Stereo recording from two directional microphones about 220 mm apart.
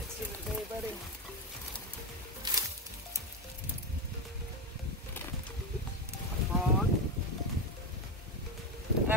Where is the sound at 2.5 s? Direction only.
20° right (ahead or behind).